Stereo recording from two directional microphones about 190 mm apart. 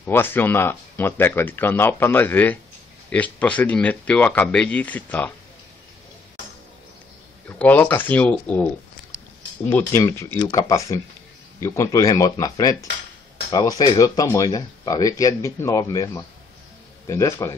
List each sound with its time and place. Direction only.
0.1 s speech: 10° left (ahead or behind)
7.4 s speech: 10° left (ahead or behind)
9.7 s speech: 15° left (ahead or behind)